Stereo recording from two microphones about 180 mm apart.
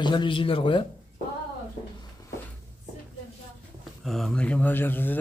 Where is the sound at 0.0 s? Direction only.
25° left (ahead or behind).